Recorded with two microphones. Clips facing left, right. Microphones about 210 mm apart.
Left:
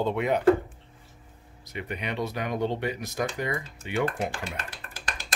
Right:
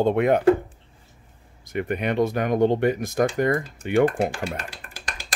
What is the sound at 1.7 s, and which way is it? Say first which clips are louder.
Speech: right 9 dB; 50° right (ahead or behind).